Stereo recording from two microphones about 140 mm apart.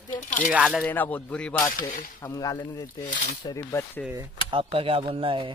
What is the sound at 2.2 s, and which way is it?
Speech, 25° left (ahead or behind).